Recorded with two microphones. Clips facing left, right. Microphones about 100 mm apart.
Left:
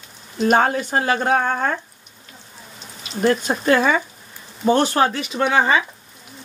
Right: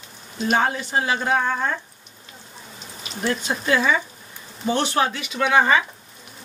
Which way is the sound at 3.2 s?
50° left (ahead or behind).